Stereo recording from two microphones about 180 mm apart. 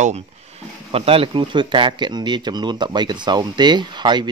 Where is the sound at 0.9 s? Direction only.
30° right (ahead or behind).